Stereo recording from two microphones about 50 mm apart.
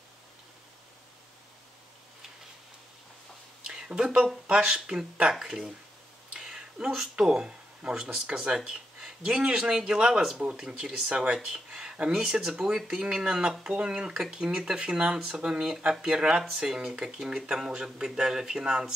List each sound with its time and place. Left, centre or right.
3.6 s a sound: centre
4.5 s speech: centre
5.3 s speech: centre